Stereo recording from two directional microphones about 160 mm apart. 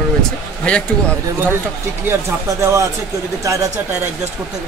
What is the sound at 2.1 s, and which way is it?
Speech, 15° right (ahead or behind).